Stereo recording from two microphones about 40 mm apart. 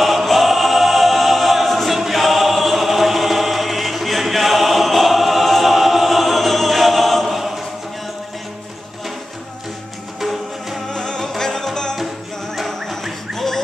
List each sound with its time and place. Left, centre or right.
0.0 s choir: centre
10.9 s music: centre
12.5 s a sound: centre